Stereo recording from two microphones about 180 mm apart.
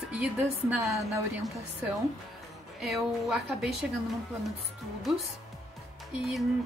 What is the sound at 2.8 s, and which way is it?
Speech, centre (ahead or behind).